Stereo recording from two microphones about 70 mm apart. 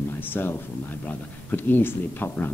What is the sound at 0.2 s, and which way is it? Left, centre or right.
A man's voice, left.